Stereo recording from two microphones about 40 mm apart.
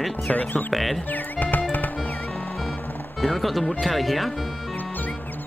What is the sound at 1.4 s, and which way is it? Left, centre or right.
Music, left.